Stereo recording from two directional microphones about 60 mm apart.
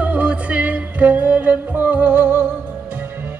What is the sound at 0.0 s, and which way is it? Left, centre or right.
Music, right.